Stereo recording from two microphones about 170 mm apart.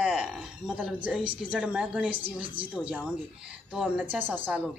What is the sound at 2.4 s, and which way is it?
Speech, 30° right (ahead or behind).